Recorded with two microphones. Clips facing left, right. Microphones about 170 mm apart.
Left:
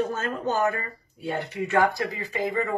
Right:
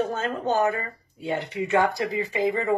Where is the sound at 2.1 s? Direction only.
20° right (ahead or behind).